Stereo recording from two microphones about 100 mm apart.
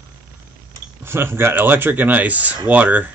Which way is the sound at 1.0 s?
25° right (ahead or behind).